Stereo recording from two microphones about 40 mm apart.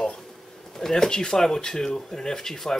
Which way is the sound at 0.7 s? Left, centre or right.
Centre.